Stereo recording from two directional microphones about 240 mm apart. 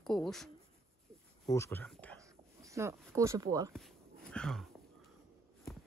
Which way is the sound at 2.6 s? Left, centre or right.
Centre.